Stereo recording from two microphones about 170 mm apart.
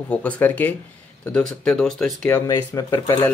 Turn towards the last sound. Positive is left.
turn(degrees=20)  # may be behind; listen again after turning